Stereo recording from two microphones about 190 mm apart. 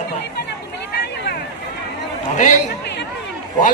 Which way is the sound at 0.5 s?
60° left (ahead or behind).